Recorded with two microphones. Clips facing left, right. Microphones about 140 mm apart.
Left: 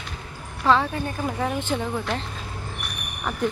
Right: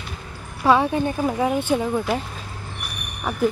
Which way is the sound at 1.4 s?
10° right (ahead or behind).